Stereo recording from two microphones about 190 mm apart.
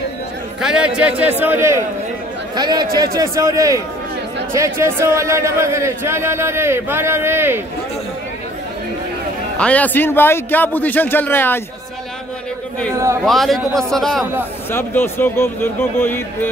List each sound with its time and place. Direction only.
0.6 s a man's voice: 5° right (ahead or behind)
9.6 s a man's voice: 5° left (ahead or behind)
12.9 s a man's voice: 15° right (ahead or behind)
13.2 s a man's voice: centre (ahead or behind)